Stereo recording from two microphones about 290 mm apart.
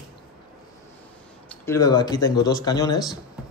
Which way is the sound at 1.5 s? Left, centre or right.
Centre.